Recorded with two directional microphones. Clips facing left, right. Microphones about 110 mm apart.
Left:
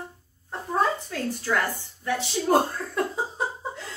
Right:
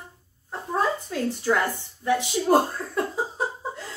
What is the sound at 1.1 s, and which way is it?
A woman's voice, 20° right (ahead or behind).